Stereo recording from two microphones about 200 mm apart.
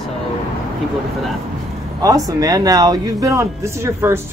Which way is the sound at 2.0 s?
15° right (ahead or behind).